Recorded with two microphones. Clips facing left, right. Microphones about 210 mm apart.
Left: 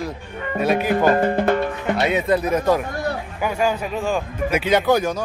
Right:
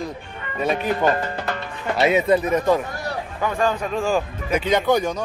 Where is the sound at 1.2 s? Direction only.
55° left (ahead or behind).